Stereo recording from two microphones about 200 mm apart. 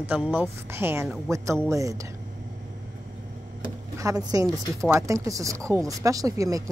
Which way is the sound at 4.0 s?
15° right (ahead or behind).